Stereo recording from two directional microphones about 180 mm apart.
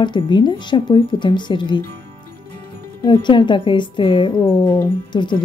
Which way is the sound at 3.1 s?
25° left (ahead or behind).